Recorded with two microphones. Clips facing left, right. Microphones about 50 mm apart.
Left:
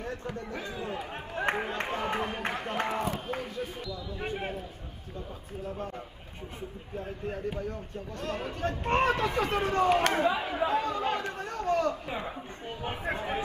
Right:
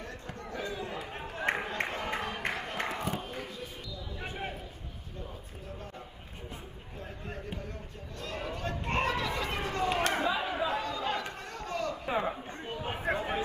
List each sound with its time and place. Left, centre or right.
0.0 s a sound: left
8.2 s speech: left
10.6 s chatter: left
12.1 s a woman's voice: right